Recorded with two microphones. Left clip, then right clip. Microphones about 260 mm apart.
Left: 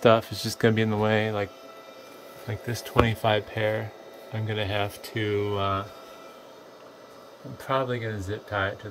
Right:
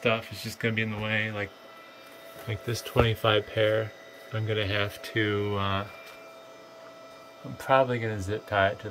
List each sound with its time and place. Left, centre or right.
0.0 s speech: left
2.9 s speech: centre
7.6 s speech: centre